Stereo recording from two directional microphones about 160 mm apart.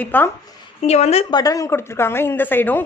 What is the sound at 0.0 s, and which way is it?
Speech, 10° left (ahead or behind).